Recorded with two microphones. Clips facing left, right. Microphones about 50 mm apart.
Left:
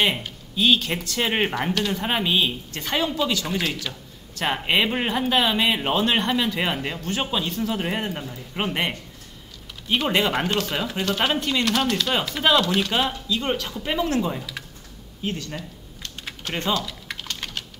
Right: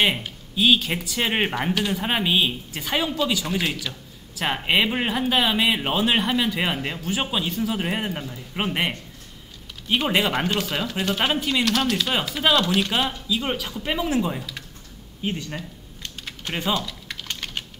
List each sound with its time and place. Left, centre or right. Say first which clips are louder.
0.0 s speech: right 1 dB; centre
3.9 s speech: even; centre
4.4 s speech: even; centre
15.2 s a sound: right 1 dB; centre
16.5 s speech: even; centre
16.8 s typing: left 1 dB; centre